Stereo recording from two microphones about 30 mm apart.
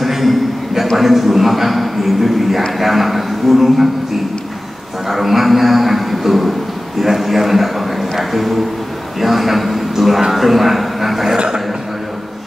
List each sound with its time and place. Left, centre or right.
0.0 s a sound: centre
0.9 s a man's voice: centre
5.0 s a man's voice: centre
11.3 s a man's voice: right